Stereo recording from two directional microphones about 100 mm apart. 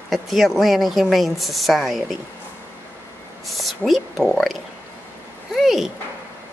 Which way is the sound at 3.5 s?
Centre (ahead or behind).